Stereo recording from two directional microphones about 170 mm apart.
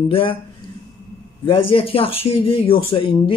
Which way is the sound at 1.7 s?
35° left (ahead or behind).